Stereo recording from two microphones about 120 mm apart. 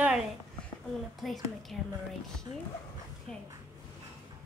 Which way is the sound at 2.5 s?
35° right (ahead or behind).